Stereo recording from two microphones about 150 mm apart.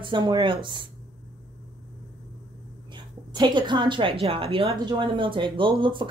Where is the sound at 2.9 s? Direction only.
30° right (ahead or behind).